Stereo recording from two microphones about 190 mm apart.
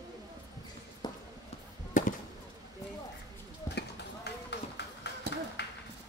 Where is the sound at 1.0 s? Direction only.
20° left (ahead or behind).